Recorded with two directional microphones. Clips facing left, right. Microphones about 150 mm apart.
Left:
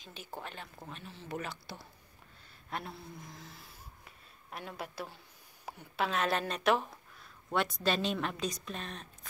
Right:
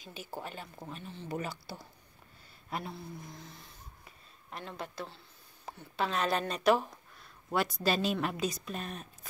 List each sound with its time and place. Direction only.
0.0 s a woman's voice: 5° right (ahead or behind)